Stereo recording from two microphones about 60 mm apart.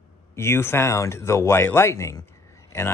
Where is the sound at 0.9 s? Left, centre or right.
Left.